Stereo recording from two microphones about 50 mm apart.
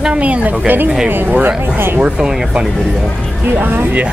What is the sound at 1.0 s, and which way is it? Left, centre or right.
Speech, right.